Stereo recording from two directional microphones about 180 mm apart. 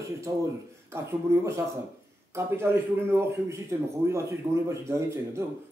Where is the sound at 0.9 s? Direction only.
15° right (ahead or behind).